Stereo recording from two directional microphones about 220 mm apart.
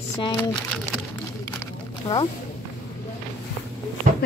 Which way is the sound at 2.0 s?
20° left (ahead or behind).